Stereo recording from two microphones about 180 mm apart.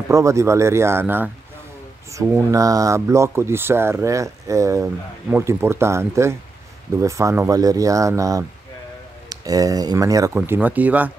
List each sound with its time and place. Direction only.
0.1 s speech: 15° right (ahead or behind)